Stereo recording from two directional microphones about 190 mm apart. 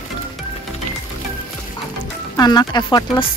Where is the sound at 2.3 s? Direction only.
20° left (ahead or behind).